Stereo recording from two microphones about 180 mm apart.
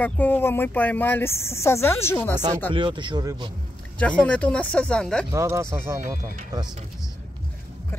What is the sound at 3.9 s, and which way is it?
Speech, 5° left (ahead or behind).